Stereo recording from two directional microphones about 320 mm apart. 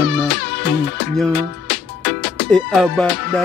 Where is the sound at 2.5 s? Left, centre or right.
Centre.